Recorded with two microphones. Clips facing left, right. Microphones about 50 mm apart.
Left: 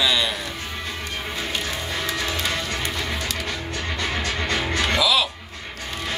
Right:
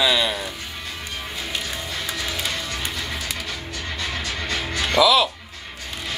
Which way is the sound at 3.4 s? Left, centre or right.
Left.